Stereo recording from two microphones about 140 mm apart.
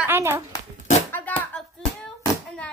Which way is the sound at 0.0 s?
20° right (ahead or behind).